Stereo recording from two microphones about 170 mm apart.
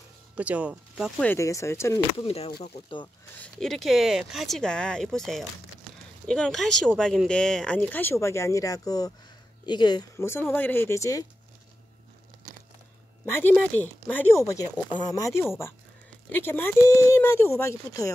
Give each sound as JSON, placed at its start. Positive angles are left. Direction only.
{"t": 0.4, "sound": "speech", "side_deg": -10}
{"t": 1.2, "sound": "speech", "side_deg": 15}
{"t": 2.1, "sound": "speech", "side_deg": 35}
{"t": 3.5, "sound": "speech", "side_deg": 0}
{"t": 13.2, "sound": "speech", "side_deg": 10}